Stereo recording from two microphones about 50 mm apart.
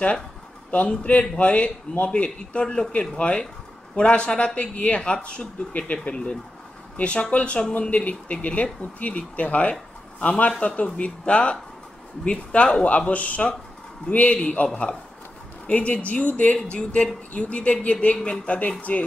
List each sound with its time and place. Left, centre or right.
0.7 s speech: left
12.8 s speech: left